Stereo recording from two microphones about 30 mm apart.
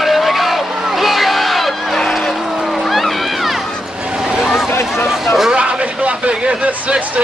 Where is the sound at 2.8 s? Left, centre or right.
Centre.